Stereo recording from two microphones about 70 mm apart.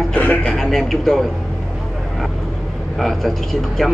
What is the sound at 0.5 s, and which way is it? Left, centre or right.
Speech, centre.